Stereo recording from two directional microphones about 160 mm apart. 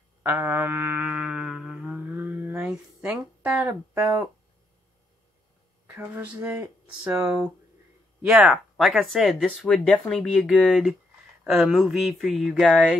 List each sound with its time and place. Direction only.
0.2 s music: 15° right (ahead or behind)
5.9 s speech: 10° right (ahead or behind)